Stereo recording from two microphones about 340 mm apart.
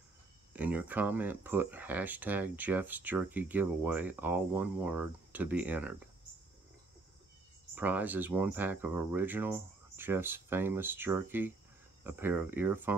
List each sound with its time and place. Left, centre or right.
0.5 s speech: centre
7.7 s speech: centre